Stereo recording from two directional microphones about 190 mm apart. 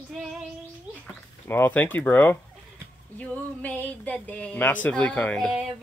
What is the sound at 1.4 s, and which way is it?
Speech, 10° left (ahead or behind).